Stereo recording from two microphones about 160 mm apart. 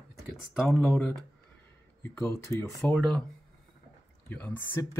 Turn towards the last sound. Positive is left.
turn(degrees=10)  # may be behind; listen again after turning